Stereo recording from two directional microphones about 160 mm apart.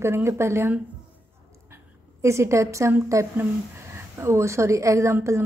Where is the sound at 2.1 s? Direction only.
15° right (ahead or behind).